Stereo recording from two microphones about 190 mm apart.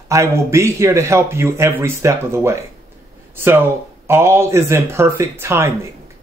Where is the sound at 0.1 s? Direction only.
15° right (ahead or behind).